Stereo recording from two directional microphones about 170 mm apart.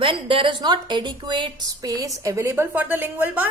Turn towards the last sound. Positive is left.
turn(degrees=-10)  # may be behind; listen again after turning